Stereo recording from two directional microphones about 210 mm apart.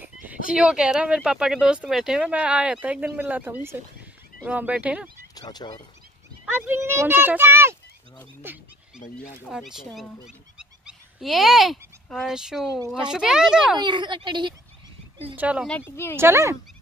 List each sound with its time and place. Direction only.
0.0 s speech: 10° right (ahead or behind)
5.3 s speech: 20° left (ahead or behind)
6.7 s a child's voice: 10° right (ahead or behind)
13.7 s a woman's voice: 20° right (ahead or behind)
15.3 s speech: 5° right (ahead or behind)
16.2 s a child's voice: 15° right (ahead or behind)